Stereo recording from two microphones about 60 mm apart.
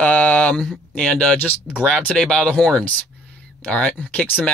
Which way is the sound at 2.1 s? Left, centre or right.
Centre.